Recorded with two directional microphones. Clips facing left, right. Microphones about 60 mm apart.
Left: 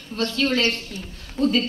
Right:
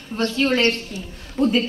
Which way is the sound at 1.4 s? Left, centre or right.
Right.